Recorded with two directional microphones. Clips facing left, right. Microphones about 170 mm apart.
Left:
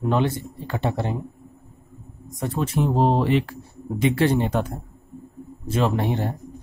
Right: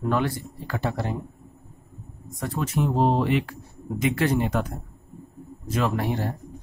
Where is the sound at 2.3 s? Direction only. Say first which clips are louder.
Left 3 dB; 25° left (ahead or behind).